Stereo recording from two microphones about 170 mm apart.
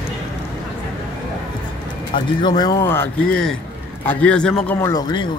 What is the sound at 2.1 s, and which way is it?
A man's voice, 30° left (ahead or behind).